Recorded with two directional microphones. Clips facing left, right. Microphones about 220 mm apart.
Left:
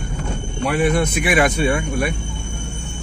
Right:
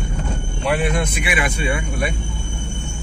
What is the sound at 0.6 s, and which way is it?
Speech, 45° left (ahead or behind).